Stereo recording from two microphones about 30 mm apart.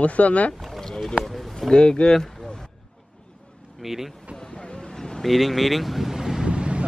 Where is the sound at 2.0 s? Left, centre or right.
Left.